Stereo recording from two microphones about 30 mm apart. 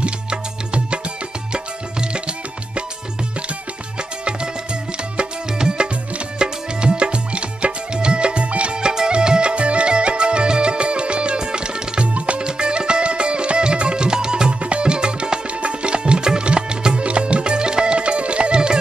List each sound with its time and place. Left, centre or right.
5.6 s music: right
8.8 s music: right
14.6 s music: right